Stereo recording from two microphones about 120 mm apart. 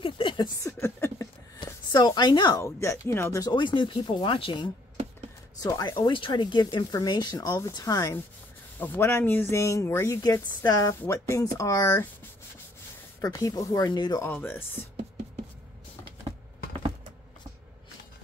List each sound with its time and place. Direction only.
0.0 s a sound: 45° left (ahead or behind)
0.7 s a sound: 20° left (ahead or behind)
1.6 s a woman's voice: 35° left (ahead or behind)
2.6 s speech: 25° left (ahead or behind)
3.5 s speech: 40° left (ahead or behind)
5.6 s speech: 30° left (ahead or behind)
5.9 s speech: 45° left (ahead or behind); by 8.2 s 30° left (ahead or behind)
8.7 s speech: 15° left (ahead or behind)
10.2 s speech: 30° left (ahead or behind)
13.2 s speech: 30° left (ahead or behind)
14.2 s speech: 15° left (ahead or behind)